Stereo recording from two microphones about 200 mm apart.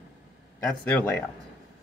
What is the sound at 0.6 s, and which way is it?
Speech, 10° left (ahead or behind).